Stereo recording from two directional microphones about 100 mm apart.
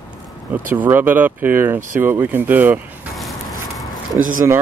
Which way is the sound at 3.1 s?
Centre (ahead or behind).